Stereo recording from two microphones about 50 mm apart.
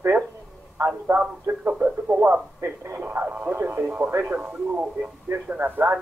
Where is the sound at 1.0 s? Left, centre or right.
Right.